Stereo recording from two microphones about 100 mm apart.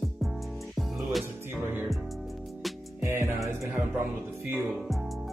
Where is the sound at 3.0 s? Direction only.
25° right (ahead or behind).